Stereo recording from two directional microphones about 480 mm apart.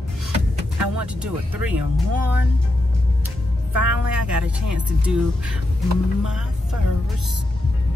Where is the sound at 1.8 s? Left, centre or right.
Right.